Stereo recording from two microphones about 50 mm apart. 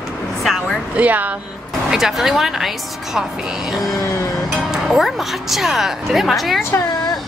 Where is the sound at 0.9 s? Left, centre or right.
Right.